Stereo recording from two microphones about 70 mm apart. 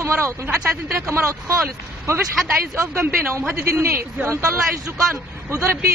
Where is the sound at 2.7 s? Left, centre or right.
Right.